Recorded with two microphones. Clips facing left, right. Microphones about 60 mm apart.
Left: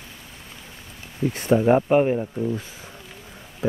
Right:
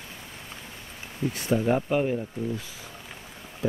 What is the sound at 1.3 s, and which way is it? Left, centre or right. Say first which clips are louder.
Speech: left 7 dB; left.